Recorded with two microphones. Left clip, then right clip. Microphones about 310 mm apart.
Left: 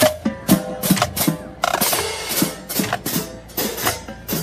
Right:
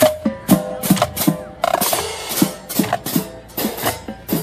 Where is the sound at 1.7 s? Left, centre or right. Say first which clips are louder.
Right 1 dB; centre.